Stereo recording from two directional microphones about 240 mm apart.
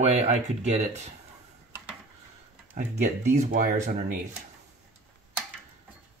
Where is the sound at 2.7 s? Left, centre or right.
Right.